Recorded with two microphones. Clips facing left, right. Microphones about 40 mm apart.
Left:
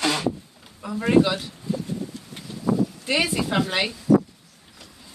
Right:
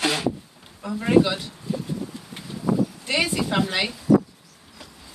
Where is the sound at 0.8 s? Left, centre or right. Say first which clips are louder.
Even; centre.